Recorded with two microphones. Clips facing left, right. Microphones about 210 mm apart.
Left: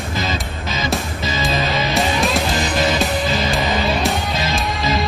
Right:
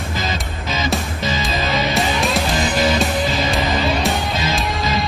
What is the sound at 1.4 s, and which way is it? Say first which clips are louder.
Music: left 2 dB; centre (ahead or behind).